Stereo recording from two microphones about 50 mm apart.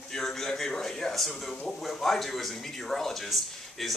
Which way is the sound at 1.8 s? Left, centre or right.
Centre.